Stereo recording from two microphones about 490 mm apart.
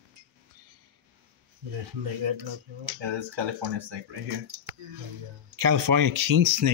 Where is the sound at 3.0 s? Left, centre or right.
Right.